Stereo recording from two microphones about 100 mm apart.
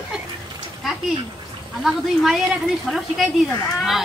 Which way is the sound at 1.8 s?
5° right (ahead or behind).